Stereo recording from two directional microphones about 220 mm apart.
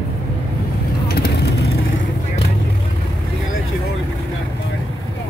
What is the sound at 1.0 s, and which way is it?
Vehicle, 45° left (ahead or behind).